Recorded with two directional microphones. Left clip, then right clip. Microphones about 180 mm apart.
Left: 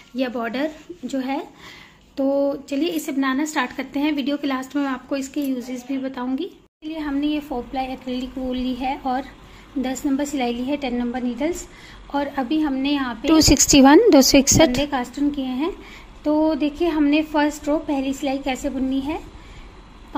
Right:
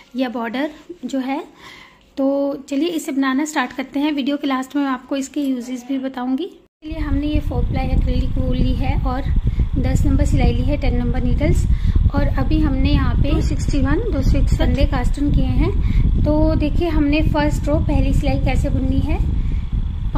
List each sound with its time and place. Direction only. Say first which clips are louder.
0.1 s a woman's voice: right 2 dB; 15° right (ahead or behind)
6.9 s a woman's voice: even; centre (ahead or behind)
13.5 s a woman's voice: left 11 dB; 40° left (ahead or behind)
14.8 s a woman's voice: even; centre (ahead or behind)